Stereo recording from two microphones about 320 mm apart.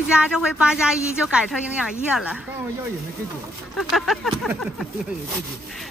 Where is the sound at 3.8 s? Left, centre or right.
Centre.